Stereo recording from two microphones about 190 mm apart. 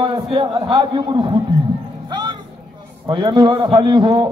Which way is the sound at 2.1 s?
25° right (ahead or behind).